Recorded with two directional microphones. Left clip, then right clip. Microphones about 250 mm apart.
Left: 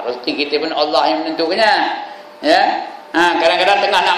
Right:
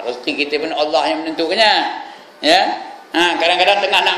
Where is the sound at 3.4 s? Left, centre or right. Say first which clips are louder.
Even; centre.